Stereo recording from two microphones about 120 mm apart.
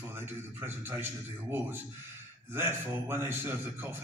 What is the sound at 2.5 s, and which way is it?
A man's voice, 20° right (ahead or behind).